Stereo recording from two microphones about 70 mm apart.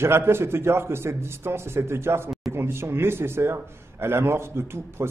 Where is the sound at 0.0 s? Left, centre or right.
Right.